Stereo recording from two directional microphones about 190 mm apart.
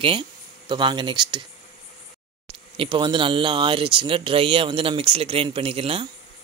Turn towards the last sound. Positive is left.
turn(degrees=-30)  # may be behind; listen again after turning